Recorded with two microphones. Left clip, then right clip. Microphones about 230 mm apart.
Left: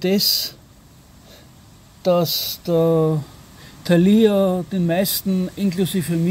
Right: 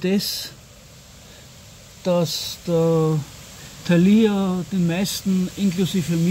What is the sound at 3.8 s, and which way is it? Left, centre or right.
Speech, centre.